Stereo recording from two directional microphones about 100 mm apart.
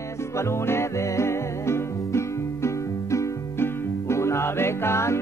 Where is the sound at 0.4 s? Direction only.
25° left (ahead or behind).